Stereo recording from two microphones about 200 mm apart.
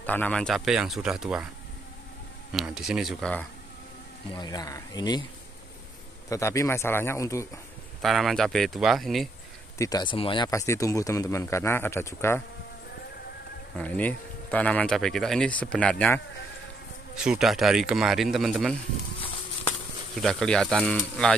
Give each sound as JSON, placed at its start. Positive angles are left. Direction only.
{"t": 0.0, "sound": "speech", "side_deg": 5}
{"t": 2.5, "sound": "speech", "side_deg": -5}
{"t": 4.3, "sound": "speech", "side_deg": 20}
{"t": 6.2, "sound": "speech", "side_deg": 15}
{"t": 8.0, "sound": "speech", "side_deg": 0}
{"t": 9.8, "sound": "speech", "side_deg": 20}
{"t": 13.7, "sound": "speech", "side_deg": 10}
{"t": 17.2, "sound": "speech", "side_deg": -5}
{"t": 20.2, "sound": "speech", "side_deg": 0}